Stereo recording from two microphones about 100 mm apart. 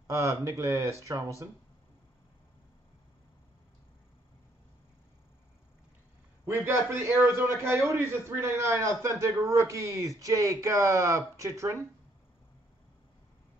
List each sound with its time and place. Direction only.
0.0 s a man's voice: 30° right (ahead or behind)
6.4 s a man's voice: 25° right (ahead or behind)